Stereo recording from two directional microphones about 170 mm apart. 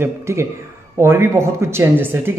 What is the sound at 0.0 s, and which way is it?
A man's voice, 15° right (ahead or behind).